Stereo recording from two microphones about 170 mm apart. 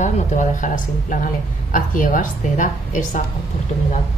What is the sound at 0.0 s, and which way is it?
Speech, 45° left (ahead or behind).